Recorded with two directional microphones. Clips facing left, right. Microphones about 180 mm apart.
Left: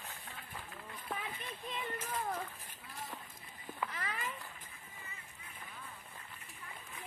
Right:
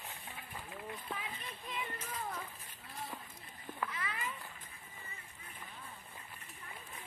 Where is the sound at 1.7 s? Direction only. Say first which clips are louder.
Left 3 dB; 50° left (ahead or behind).